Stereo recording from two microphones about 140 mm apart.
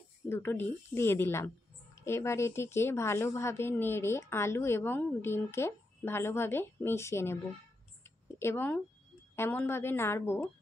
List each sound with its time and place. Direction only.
0.3 s a woman's voice: 15° left (ahead or behind)
8.4 s a woman's voice: 15° left (ahead or behind)